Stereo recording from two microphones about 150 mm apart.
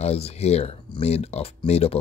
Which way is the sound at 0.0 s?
45° left (ahead or behind).